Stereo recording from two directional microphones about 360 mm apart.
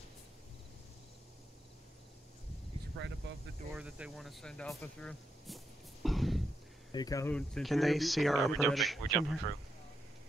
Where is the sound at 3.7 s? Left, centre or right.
Centre.